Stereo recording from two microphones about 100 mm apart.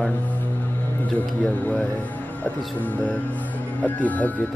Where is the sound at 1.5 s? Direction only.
15° left (ahead or behind).